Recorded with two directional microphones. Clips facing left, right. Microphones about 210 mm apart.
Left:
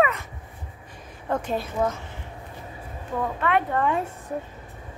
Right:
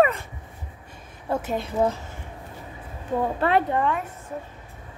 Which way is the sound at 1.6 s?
25° right (ahead or behind).